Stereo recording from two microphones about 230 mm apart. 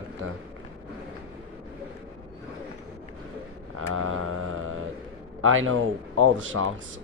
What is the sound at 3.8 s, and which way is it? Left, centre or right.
Mantra, right.